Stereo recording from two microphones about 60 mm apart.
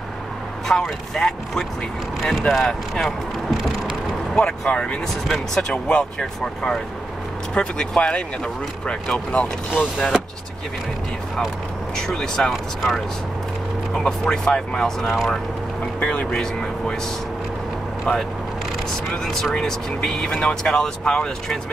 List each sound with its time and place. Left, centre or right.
0.7 s speech: centre
4.4 s speech: centre
9.9 s speech: centre
12.1 s speech: centre
16.0 s speech: centre
19.2 s speech: centre